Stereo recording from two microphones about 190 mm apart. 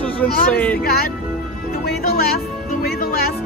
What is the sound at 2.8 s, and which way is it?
Music, 50° left (ahead or behind).